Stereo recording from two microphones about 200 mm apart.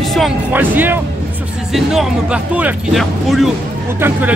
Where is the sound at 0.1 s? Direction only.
5° right (ahead or behind).